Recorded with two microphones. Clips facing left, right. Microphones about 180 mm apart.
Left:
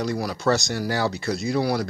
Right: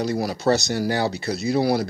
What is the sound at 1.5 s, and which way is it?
Speech, 35° right (ahead or behind).